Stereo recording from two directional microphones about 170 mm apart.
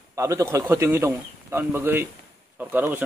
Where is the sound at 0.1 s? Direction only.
20° right (ahead or behind).